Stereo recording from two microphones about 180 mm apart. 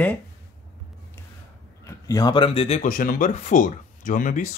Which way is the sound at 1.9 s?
20° left (ahead or behind).